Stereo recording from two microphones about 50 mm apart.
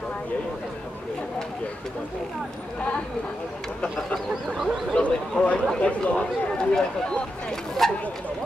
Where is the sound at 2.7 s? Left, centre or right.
Left.